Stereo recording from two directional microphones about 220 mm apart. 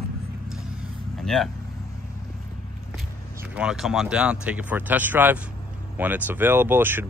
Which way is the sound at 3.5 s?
5° right (ahead or behind).